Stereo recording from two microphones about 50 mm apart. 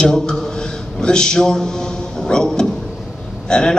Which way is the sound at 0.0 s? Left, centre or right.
Centre.